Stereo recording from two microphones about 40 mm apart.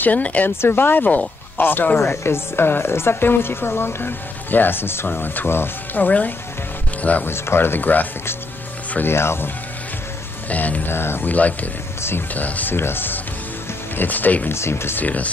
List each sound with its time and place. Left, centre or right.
0.0 s speech: left
0.6 s speech: left
2.0 s speech: left
4.5 s speech: left
5.0 s speech: left
7.2 s speech: left
9.0 s speech: left
10.5 s speech: left
10.9 s speech: left
11.2 s speech: left
12.7 s speech: left
13.9 s speech: left
14.5 s speech: left
15.0 s speech: left